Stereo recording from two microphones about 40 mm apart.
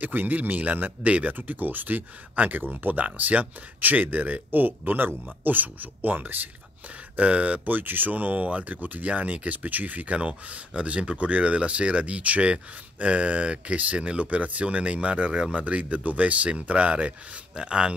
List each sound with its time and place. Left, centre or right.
0.0 s speech: right
1.0 s speech: right
1.3 s speech: right
7.2 s speech: right